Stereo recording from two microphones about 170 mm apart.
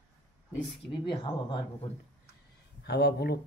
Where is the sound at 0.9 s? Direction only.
30° left (ahead or behind).